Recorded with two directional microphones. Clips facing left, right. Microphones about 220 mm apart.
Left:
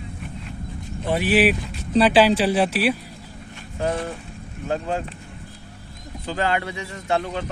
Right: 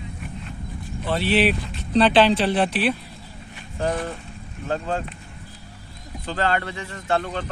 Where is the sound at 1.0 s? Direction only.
15° left (ahead or behind).